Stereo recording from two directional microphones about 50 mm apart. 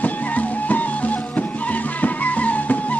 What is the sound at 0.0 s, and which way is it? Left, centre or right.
Music, left.